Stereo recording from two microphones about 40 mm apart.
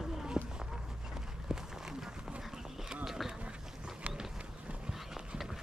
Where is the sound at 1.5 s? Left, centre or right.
Centre.